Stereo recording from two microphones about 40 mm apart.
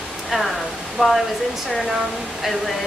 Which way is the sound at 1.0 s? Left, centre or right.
Right.